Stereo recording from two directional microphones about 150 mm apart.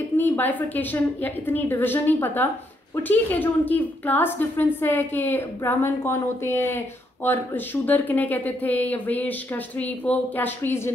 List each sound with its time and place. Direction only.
0.2 s speech: 10° left (ahead or behind)